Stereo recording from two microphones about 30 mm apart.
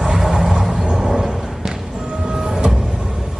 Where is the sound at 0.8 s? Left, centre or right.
Centre.